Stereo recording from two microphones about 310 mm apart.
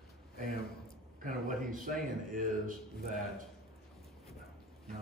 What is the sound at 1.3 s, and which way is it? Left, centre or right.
Speech, right.